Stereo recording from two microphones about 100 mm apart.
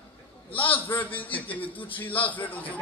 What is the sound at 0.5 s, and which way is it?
A man's voice, 15° left (ahead or behind).